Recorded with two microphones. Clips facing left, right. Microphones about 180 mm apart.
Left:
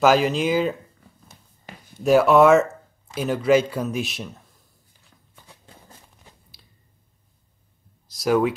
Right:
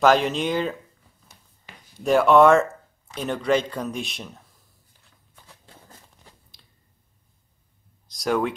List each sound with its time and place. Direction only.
0.0 s speech: 5° left (ahead or behind)
2.0 s speech: 5° left (ahead or behind)
8.1 s speech: 5° left (ahead or behind)